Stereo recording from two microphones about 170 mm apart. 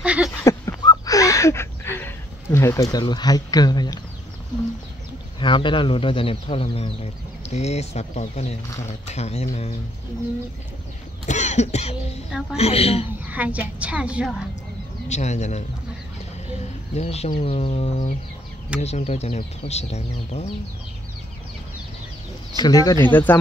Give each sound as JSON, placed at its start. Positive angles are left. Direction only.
{"t": 0.0, "sound": "a sound", "side_deg": -5}
{"t": 0.4, "sound": "a sound", "side_deg": 20}
{"t": 5.4, "sound": "speech", "side_deg": 30}
{"t": 11.2, "sound": "cough", "side_deg": 45}
{"t": 12.3, "sound": "speech", "side_deg": -5}
{"t": 12.5, "sound": "speech", "side_deg": 35}
{"t": 13.2, "sound": "a woman's voice", "side_deg": -10}
{"t": 15.0, "sound": "speech", "side_deg": 40}
{"t": 16.9, "sound": "speech", "side_deg": 40}
{"t": 22.6, "sound": "speech", "side_deg": 20}